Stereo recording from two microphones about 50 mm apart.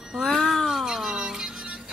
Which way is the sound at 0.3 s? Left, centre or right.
Centre.